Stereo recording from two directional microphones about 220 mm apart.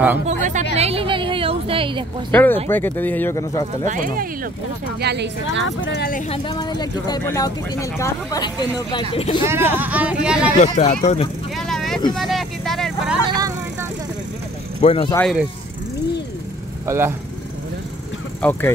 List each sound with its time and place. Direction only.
0.3 s a sound: 35° right (ahead or behind)
2.3 s speech: 10° left (ahead or behind)
3.8 s speech: 35° right (ahead or behind)
5.0 s speech: 50° right (ahead or behind)
5.8 s speech: 50° left (ahead or behind)
6.2 s speech: 25° left (ahead or behind)
9.5 s speech: 5° right (ahead or behind)
10.6 s speech: 30° left (ahead or behind)
11.5 s vehicle: centre (ahead or behind)
14.8 s speech: 25° left (ahead or behind)
16.8 s speech: 10° right (ahead or behind)
18.4 s speech: 10° left (ahead or behind)